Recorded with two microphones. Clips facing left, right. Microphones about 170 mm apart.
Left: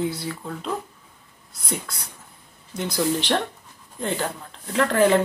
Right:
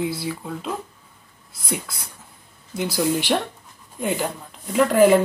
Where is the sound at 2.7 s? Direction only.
5° right (ahead or behind).